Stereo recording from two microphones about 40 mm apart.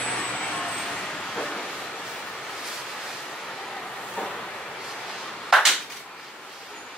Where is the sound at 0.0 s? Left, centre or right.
Centre.